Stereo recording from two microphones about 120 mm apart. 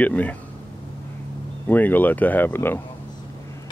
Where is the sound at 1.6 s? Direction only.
15° left (ahead or behind).